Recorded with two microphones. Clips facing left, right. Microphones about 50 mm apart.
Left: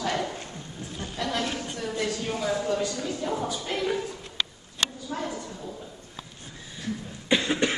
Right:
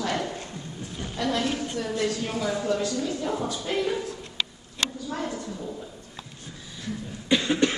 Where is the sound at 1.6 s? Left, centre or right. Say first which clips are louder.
Right 3 dB; centre.